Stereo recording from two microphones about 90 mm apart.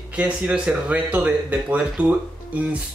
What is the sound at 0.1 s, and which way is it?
Speech, 15° right (ahead or behind).